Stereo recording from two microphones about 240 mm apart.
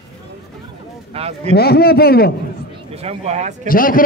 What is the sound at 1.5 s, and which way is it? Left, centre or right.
Speech, left.